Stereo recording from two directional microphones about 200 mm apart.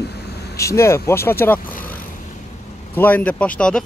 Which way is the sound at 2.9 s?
10° left (ahead or behind).